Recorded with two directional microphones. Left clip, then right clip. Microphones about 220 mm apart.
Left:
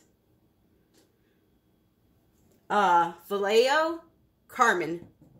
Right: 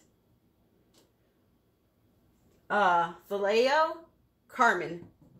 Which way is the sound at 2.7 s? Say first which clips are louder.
Left 3 dB; 45° left (ahead or behind).